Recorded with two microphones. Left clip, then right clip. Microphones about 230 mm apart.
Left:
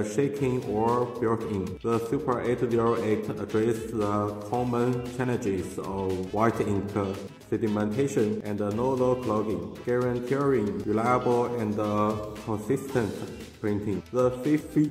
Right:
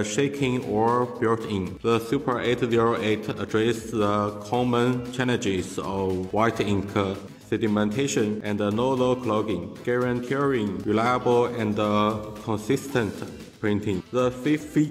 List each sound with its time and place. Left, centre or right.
0.0 s a man's voice: right